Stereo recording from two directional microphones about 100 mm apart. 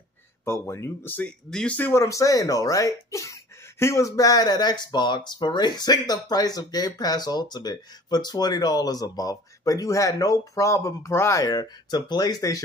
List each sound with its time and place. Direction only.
0.5 s speech: 25° left (ahead or behind)
1.5 s speech: 10° left (ahead or behind)
1.8 s speech: 20° left (ahead or behind)
2.0 s speech: 35° left (ahead or behind)